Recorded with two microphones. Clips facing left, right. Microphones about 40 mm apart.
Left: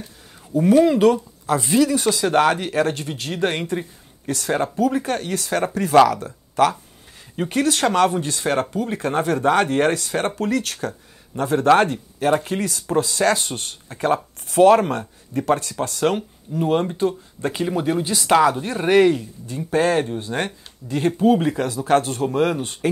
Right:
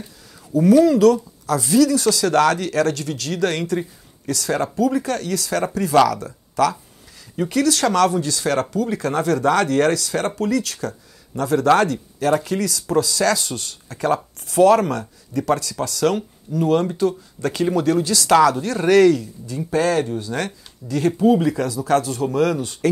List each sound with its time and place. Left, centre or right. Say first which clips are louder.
0.7 s speech: right 2 dB; left
10.9 s speech: even; left